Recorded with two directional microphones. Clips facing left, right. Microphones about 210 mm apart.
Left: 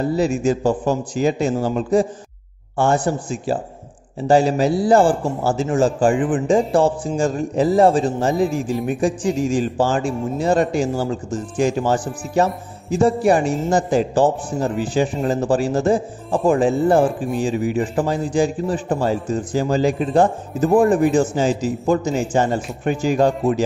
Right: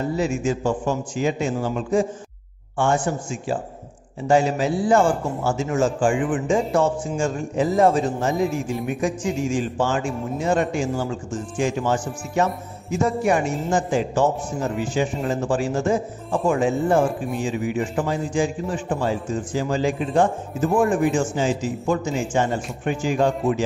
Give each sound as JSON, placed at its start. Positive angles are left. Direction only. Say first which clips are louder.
{"t": 0.0, "sound": "music", "louder": "left 4 dB", "side_deg": 35}